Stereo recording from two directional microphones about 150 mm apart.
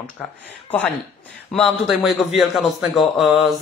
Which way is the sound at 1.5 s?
Centre (ahead or behind).